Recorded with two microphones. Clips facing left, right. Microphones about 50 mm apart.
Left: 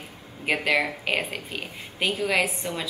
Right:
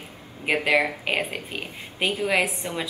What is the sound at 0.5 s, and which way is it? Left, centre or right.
Speech, centre.